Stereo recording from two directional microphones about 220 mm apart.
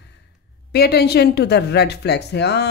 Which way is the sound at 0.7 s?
45° left (ahead or behind).